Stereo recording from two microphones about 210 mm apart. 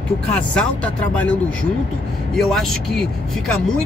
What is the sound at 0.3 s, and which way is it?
Speech, 5° left (ahead or behind).